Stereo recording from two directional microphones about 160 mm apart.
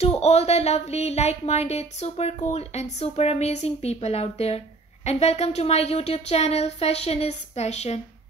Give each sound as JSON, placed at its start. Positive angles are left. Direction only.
{"t": 0.0, "sound": "speech", "side_deg": 40}